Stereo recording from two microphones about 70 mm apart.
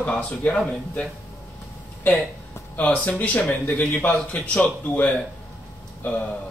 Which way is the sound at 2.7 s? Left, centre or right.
Left.